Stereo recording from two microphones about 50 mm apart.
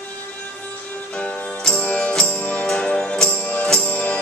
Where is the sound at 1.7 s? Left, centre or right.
Centre.